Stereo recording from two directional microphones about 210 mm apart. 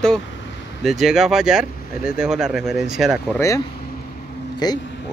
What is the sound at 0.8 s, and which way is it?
Speech, centre (ahead or behind).